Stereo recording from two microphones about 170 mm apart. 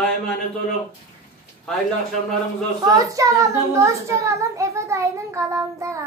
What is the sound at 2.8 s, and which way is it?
A child's voice, 20° right (ahead or behind).